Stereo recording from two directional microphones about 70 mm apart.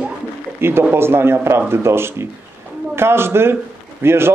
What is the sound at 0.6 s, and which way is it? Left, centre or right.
Speech, right.